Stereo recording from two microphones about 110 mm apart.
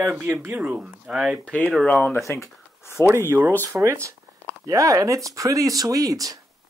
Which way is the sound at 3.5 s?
30° right (ahead or behind).